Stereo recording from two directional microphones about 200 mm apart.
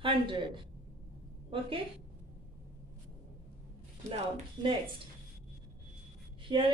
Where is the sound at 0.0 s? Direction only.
25° right (ahead or behind).